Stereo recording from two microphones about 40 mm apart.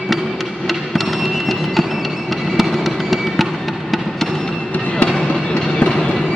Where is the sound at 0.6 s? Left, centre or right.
Centre.